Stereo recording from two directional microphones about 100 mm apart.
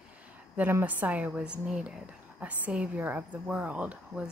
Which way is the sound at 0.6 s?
20° right (ahead or behind).